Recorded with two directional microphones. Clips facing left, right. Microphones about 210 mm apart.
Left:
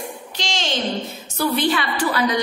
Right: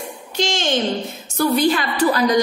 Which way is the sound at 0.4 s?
50° right (ahead or behind).